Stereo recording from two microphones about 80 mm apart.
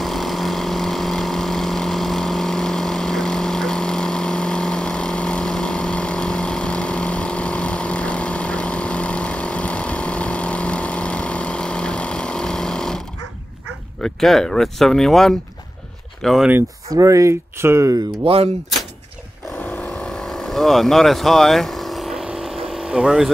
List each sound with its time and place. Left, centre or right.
0.0 s vehicle: centre
14.0 s speech: centre
16.9 s speech: right
20.0 s vehicle: centre